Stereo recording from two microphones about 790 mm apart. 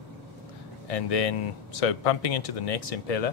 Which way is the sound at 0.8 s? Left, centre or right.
Left.